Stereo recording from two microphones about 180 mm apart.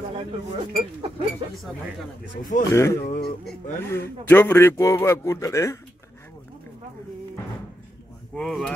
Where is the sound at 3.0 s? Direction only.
55° left (ahead or behind).